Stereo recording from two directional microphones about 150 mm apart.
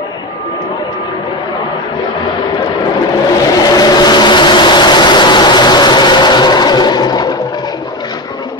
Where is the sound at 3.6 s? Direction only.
25° left (ahead or behind).